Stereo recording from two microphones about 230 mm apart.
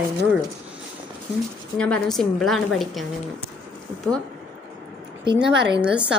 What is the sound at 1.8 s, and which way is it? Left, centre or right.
A woman's voice, centre.